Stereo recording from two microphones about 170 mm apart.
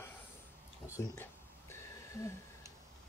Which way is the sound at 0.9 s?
15° left (ahead or behind).